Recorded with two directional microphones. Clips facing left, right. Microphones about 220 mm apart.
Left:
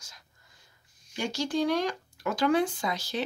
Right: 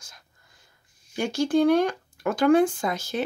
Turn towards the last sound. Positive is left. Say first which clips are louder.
# right 4 dB
turn(degrees=-50)  # may be behind; listen again after turning